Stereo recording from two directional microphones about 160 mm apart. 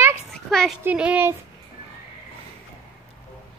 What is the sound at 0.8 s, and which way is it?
Speech, 10° right (ahead or behind).